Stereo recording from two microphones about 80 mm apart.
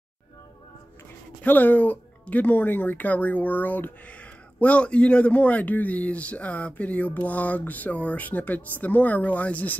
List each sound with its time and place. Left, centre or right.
1.4 s speech: left